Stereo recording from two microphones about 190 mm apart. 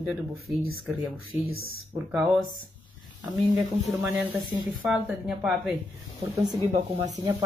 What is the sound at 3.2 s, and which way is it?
A woman's voice, 5° right (ahead or behind).